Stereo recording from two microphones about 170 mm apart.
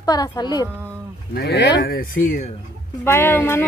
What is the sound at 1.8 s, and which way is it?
Speech, 60° left (ahead or behind).